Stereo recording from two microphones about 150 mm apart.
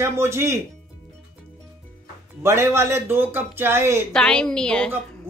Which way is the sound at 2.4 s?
20° right (ahead or behind).